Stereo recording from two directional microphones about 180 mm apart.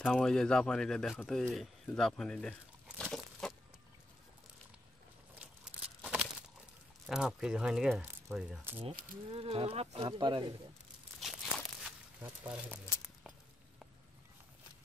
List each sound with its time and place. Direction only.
0.0 s speech: 5° left (ahead or behind)
3.0 s a sound: 5° left (ahead or behind)
7.1 s speech: centre (ahead or behind)
9.3 s speech: 30° right (ahead or behind)
11.1 s a sound: centre (ahead or behind)
12.4 s speech: 5° right (ahead or behind)